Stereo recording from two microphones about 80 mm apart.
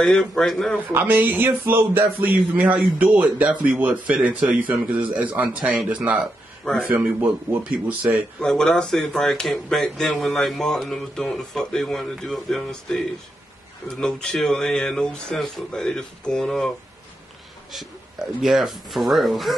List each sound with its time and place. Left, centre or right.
0.0 s speech: centre
0.9 s a man's voice: right
6.7 s speech: centre
7.5 s speech: right
8.0 s speech: centre
8.4 s speech: centre